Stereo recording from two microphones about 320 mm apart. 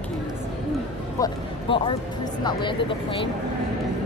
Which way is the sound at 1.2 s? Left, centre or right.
Centre.